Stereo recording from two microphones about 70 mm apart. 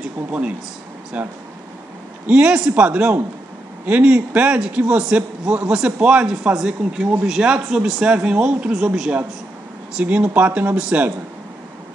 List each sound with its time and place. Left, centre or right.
1.1 s a man's voice: centre
9.9 s a man's voice: right